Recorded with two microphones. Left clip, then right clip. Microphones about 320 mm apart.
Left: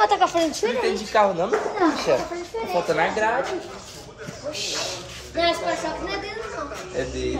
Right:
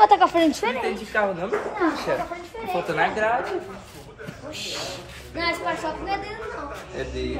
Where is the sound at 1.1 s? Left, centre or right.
Left.